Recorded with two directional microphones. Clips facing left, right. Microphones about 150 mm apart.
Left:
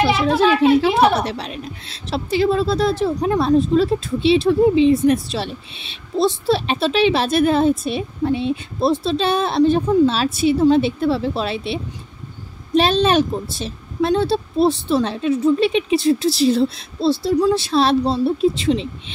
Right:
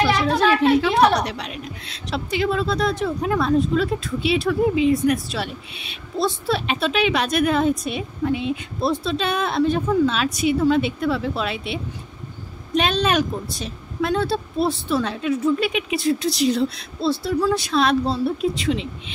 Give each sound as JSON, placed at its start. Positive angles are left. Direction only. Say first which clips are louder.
{"t": 0.1, "sound": "speech", "louder": "left 3 dB", "side_deg": 5}
{"t": 0.9, "sound": "a sound", "louder": "left 1 dB", "side_deg": 5}
{"t": 1.2, "sound": "a woman's voice", "louder": "left 3 dB", "side_deg": 35}